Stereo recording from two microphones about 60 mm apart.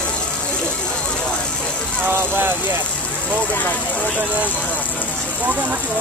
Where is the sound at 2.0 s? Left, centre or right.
Right.